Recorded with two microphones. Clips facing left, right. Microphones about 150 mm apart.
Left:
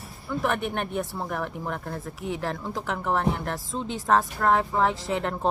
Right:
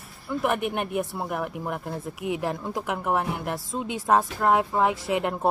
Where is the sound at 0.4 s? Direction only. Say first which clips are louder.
Right 1 dB; 10° right (ahead or behind).